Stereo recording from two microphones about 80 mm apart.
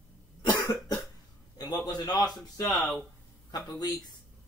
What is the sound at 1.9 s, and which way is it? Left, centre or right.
Speech, left.